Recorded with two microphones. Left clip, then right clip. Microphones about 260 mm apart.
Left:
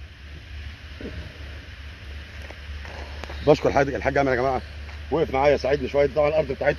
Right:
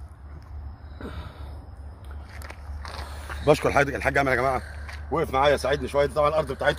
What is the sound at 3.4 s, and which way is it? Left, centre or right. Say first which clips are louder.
Speech: left 2 dB; right.